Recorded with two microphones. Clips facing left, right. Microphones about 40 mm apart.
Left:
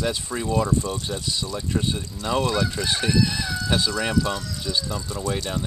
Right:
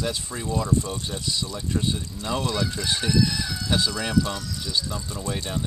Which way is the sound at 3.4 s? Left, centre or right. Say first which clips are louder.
Left 2 dB; centre.